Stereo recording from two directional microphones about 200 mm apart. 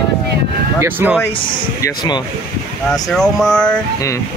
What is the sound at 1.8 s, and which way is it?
Speech, 20° left (ahead or behind).